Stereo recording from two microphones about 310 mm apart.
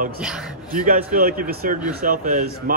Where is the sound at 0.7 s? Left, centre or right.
Right.